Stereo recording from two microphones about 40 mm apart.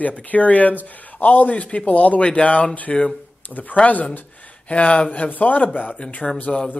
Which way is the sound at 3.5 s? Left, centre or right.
Left.